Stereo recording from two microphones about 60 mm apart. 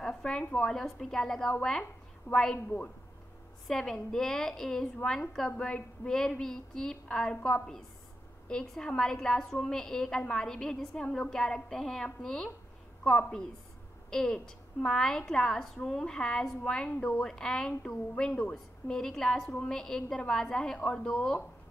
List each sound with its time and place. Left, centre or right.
0.0 s a sound: centre
0.7 s a woman's voice: centre
3.6 s a woman's voice: centre